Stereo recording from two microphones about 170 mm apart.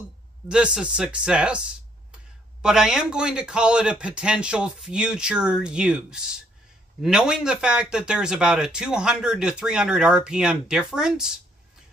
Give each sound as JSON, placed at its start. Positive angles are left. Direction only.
{"t": 0.5, "sound": "a man's voice", "side_deg": -5}
{"t": 2.6, "sound": "a man's voice", "side_deg": -5}